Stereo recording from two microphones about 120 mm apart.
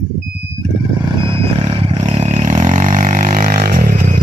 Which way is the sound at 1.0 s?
45° right (ahead or behind).